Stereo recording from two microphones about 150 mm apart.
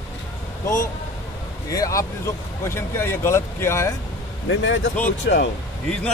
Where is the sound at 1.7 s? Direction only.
20° left (ahead or behind).